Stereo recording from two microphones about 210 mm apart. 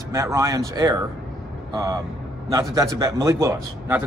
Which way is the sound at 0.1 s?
15° right (ahead or behind).